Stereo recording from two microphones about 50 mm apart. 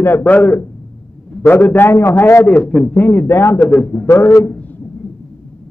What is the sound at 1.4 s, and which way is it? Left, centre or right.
A man's voice, left.